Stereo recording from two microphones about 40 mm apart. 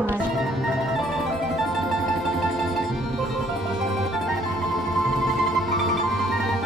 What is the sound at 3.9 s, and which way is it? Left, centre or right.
Music, centre.